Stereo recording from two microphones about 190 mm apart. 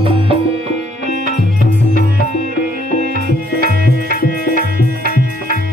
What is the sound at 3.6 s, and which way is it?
Music, 50° right (ahead or behind).